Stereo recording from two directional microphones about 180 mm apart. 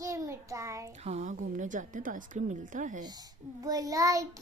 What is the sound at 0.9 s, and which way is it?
A woman's voice, 40° right (ahead or behind).